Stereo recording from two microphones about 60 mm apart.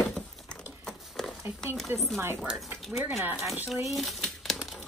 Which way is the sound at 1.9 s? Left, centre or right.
Right.